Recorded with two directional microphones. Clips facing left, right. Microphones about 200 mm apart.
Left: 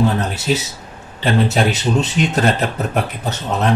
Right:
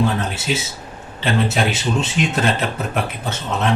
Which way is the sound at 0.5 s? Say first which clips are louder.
Left 4 dB; 35° left (ahead or behind).